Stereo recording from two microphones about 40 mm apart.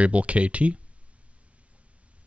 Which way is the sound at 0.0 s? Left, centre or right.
Right.